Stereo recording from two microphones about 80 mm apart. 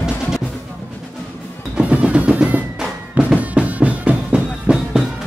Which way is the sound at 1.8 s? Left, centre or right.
Centre.